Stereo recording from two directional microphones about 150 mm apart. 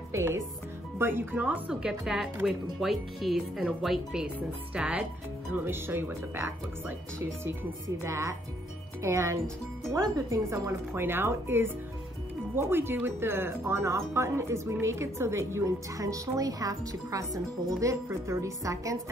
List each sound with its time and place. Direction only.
0.1 s speech: 15° right (ahead or behind)
8.0 s speech: 20° right (ahead or behind)